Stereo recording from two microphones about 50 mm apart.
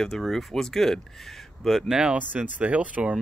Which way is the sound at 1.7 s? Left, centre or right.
Centre.